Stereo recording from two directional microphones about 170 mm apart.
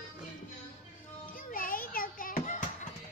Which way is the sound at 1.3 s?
55° left (ahead or behind).